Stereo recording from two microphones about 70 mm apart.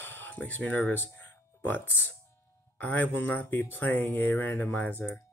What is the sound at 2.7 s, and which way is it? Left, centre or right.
Speech, left.